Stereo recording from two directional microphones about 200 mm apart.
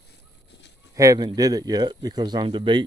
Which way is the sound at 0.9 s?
15° right (ahead or behind).